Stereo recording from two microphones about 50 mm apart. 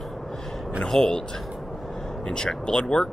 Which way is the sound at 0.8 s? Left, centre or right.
Centre.